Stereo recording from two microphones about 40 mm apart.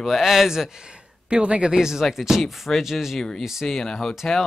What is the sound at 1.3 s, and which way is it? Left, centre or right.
Speech, right.